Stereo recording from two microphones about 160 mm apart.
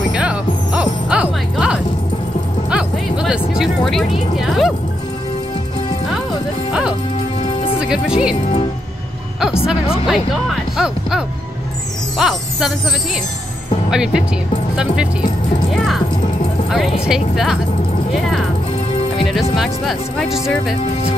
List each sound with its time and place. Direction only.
0.1 s music: 5° right (ahead or behind)
2.7 s vehicle: 5° right (ahead or behind)
6.7 s speech: 5° right (ahead or behind)
9.4 s speech: 5° right (ahead or behind)
15.7 s speech: centre (ahead or behind)
17.1 s speech: centre (ahead or behind)
19.5 s speech: centre (ahead or behind)